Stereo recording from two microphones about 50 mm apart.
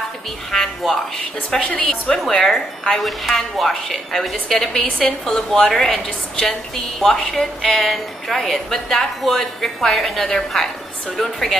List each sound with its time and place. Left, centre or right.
0.5 s a woman's voice: centre
1.5 s a woman's voice: centre
2.3 s a woman's voice: centre